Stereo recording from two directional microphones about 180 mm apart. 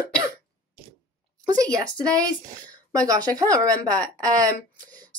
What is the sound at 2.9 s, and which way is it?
Speech, 20° right (ahead or behind).